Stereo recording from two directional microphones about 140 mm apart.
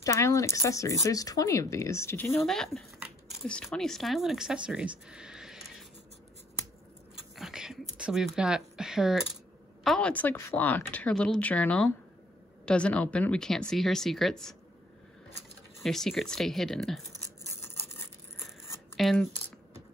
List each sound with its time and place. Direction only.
0.0 s speech: 20° left (ahead or behind)
2.4 s speech: 5° left (ahead or behind)
7.3 s speech: 5° right (ahead or behind)
15.8 s speech: centre (ahead or behind)